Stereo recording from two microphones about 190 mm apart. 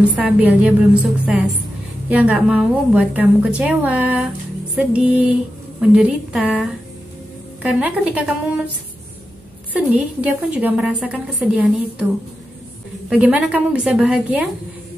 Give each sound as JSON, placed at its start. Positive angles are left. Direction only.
{"t": 0.2, "sound": "a woman's voice", "side_deg": -10}
{"t": 2.0, "sound": "a woman's voice", "side_deg": -5}
{"t": 9.8, "sound": "a woman's voice", "side_deg": -5}
{"t": 13.1, "sound": "a woman's voice", "side_deg": -5}